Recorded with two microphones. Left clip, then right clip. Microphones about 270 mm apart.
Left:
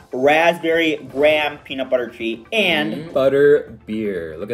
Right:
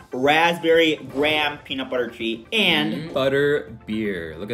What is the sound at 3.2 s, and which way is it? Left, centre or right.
Speech, centre.